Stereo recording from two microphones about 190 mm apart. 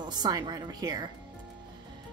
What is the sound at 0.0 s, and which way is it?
Speech, 20° right (ahead or behind).